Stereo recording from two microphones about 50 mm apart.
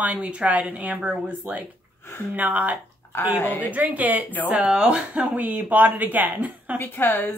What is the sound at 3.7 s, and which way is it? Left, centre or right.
Speech, right.